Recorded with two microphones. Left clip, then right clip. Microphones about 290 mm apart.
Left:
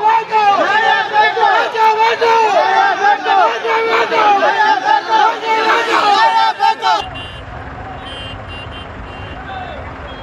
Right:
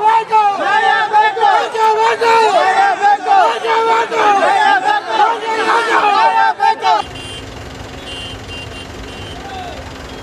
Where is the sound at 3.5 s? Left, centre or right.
Right.